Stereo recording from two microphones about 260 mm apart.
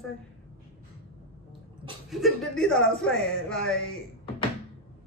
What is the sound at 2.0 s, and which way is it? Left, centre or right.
Speech, centre.